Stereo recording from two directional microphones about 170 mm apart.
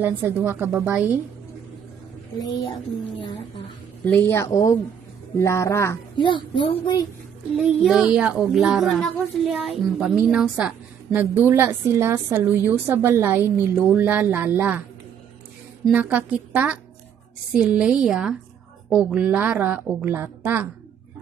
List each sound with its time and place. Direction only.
0.0 s a woman's voice: 15° right (ahead or behind)
2.3 s a woman's voice: 20° left (ahead or behind)
4.0 s a woman's voice: 10° left (ahead or behind)
6.1 s a woman's voice: 30° left (ahead or behind)
7.6 s a woman's voice: 5° right (ahead or behind)
15.8 s a woman's voice: 5° right (ahead or behind)